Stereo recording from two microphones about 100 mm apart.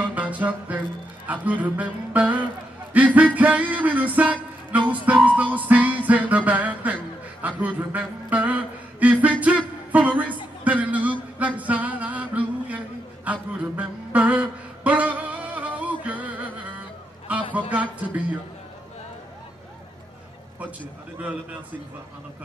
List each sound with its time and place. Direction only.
0.0 s music: 15° right (ahead or behind)
1.2 s speech: 15° right (ahead or behind)
3.3 s music: 15° right (ahead or behind)
7.4 s speech: 15° right (ahead or behind)
9.9 s a sound: 15° right (ahead or behind)